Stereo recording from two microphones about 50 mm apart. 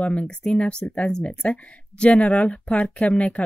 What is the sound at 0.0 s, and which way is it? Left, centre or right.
Speech, left.